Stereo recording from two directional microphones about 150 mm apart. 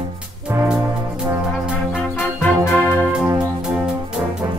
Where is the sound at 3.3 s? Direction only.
5° right (ahead or behind).